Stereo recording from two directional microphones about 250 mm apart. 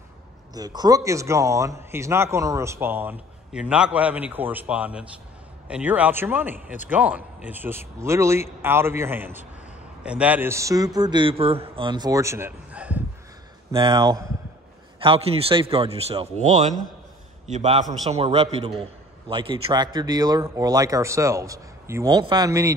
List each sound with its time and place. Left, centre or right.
0.6 s a man's voice: centre